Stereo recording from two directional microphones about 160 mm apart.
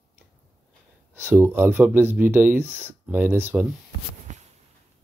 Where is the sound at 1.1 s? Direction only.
15° right (ahead or behind).